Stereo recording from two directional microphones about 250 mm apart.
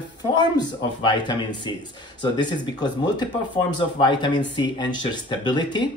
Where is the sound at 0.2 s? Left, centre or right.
Centre.